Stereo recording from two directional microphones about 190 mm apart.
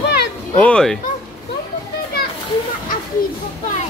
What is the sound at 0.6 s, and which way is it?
Speech, 5° left (ahead or behind).